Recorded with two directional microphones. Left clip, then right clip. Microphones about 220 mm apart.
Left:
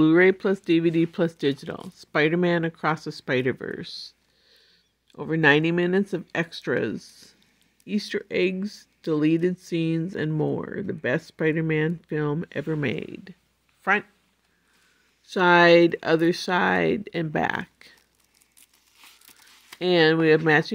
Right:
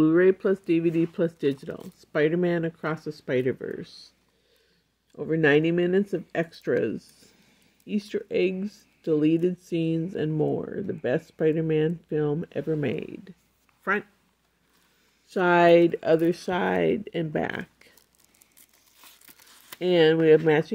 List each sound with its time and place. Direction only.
0.0 s speech: 30° left (ahead or behind)
5.1 s speech: 25° left (ahead or behind)
15.2 s speech: 20° left (ahead or behind)
19.8 s speech: 20° left (ahead or behind)